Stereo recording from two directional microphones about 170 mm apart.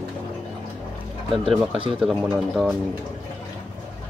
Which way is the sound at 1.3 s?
Centre (ahead or behind).